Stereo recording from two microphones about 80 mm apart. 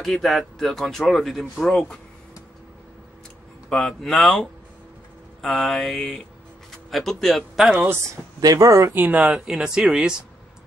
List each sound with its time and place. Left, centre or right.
0.0 s speech: centre
3.6 s speech: centre
8.4 s speech: right
8.9 s speech: right
9.2 s speech: centre